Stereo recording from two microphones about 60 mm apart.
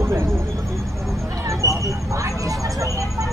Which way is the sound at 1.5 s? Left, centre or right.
Right.